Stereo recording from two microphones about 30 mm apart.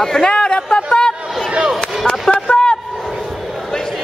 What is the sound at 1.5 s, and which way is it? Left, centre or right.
Chop, right.